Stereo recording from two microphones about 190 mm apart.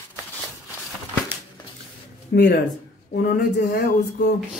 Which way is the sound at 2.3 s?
60° left (ahead or behind).